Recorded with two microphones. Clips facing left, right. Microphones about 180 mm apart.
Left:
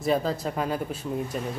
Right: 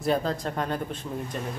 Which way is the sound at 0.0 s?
Centre (ahead or behind).